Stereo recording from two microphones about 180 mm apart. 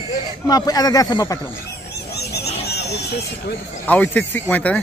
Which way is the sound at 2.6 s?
65° left (ahead or behind).